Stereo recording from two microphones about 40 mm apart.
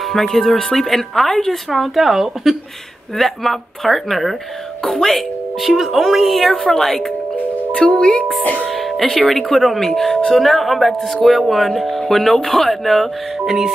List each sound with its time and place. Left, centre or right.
0.1 s speech: centre
3.2 s speech: centre
7.7 s speech: left
8.6 s music: centre
9.3 s speech: centre
13.5 s speech: centre